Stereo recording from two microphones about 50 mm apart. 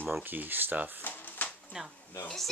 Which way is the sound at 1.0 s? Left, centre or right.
Left.